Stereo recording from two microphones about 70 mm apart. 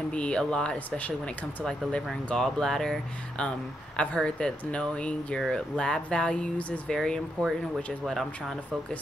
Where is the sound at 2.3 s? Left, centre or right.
Centre.